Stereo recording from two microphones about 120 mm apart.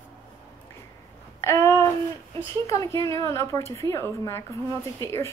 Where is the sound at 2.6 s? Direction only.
25° left (ahead or behind).